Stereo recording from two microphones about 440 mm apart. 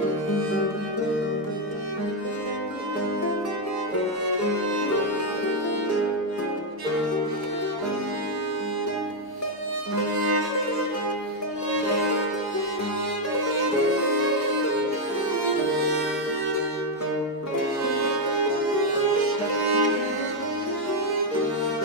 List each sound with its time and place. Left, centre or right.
10.1 s music: right
19.6 s music: right